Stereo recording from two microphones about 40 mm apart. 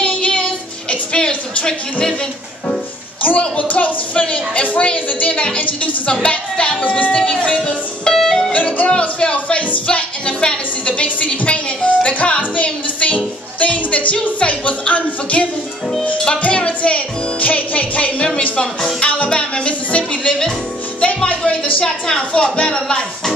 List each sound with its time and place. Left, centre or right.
0.0 s music: left
3.2 s a woman's voice: left
8.0 s music: centre
8.5 s a woman's voice: left
10.9 s a woman's voice: left
18.9 s music: left
20.2 s a woman's voice: centre
21.7 s a woman's voice: centre